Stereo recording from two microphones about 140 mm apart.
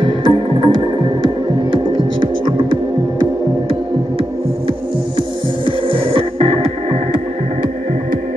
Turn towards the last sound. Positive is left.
turn(degrees=-40)  # may be behind; listen again after turning